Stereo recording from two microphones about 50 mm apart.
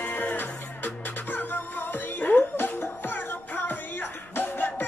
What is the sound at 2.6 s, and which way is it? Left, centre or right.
Music, left.